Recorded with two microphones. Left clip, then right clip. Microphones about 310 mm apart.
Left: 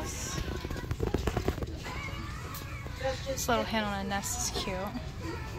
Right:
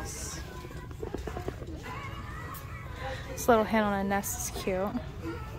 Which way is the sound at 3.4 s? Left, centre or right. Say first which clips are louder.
Right 6 dB; right.